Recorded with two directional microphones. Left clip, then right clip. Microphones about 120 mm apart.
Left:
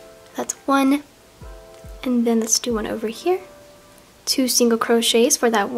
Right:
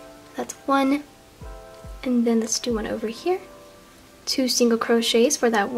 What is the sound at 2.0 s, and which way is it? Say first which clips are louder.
Speech: left 2 dB; 15° left (ahead or behind).